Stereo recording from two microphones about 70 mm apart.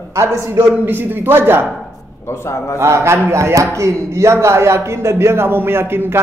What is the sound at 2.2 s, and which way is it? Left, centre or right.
Speech, left.